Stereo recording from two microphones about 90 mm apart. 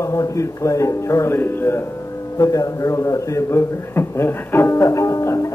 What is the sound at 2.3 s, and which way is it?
A man's voice, 40° left (ahead or behind).